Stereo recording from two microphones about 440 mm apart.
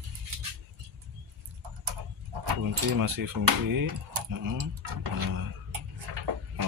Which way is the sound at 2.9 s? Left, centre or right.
Right.